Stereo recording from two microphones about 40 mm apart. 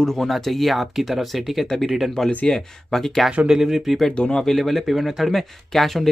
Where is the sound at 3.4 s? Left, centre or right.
Centre.